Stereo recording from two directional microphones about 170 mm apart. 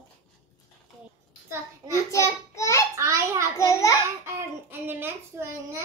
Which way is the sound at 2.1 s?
15° left (ahead or behind).